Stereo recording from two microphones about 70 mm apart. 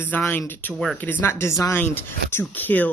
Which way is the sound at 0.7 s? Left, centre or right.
Centre.